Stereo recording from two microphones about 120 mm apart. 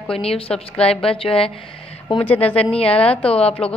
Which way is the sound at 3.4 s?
55° left (ahead or behind).